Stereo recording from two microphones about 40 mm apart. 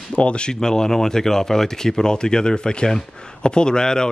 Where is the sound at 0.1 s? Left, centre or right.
Left.